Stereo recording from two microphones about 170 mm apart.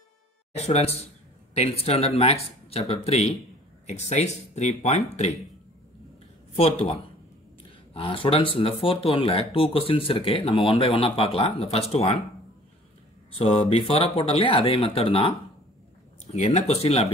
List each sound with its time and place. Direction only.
0.6 s speech: 40° left (ahead or behind)
6.5 s speech: 40° left (ahead or behind)
13.4 s speech: 35° left (ahead or behind)